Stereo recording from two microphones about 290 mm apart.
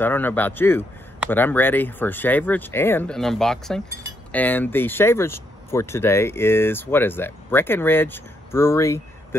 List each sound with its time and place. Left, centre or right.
0.0 s speech: centre